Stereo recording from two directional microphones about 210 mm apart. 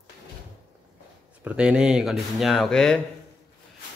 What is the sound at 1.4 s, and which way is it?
Speech, 5° right (ahead or behind).